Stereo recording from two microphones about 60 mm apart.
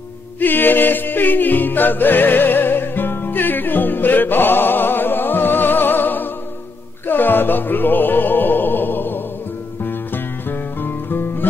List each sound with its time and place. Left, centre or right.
0.4 s music: left